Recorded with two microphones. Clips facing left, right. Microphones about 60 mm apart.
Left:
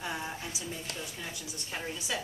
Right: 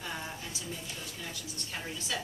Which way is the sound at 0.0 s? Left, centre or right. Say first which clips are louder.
Left 3 dB; centre.